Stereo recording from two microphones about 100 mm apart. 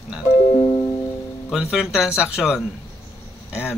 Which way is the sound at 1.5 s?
5° right (ahead or behind).